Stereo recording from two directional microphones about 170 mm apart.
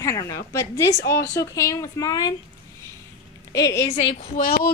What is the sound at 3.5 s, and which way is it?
Speech, 20° left (ahead or behind).